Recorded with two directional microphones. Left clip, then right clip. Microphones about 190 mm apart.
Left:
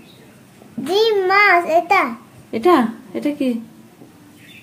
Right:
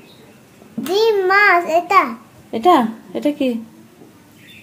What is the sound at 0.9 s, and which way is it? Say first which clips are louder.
A child's voice: right 1 dB; centre (ahead or behind).